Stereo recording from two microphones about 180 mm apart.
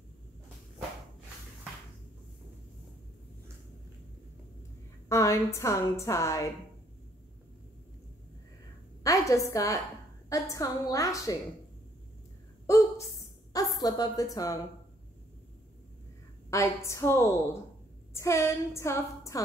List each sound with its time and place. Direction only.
5.0 s a woman's voice: 15° left (ahead or behind)
9.0 s a woman's voice: 20° left (ahead or behind)
12.6 s a sound: 15° left (ahead or behind)
13.5 s a woman's voice: 20° left (ahead or behind)
16.4 s a woman's voice: 15° left (ahead or behind)